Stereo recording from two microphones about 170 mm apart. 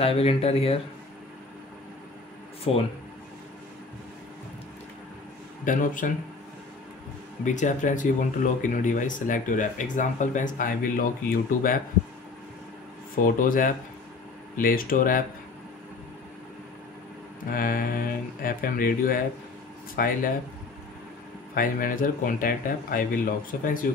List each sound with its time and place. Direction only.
0.0 s speech: 35° left (ahead or behind)
2.7 s speech: 35° left (ahead or behind)
5.7 s speech: 50° left (ahead or behind)
7.4 s speech: 45° left (ahead or behind)
13.2 s speech: 55° left (ahead or behind)
17.5 s speech: 55° left (ahead or behind)
21.5 s speech: 55° left (ahead or behind)